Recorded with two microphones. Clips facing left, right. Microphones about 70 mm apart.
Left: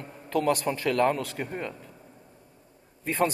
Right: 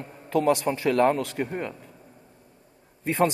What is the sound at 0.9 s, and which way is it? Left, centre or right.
Speech, right.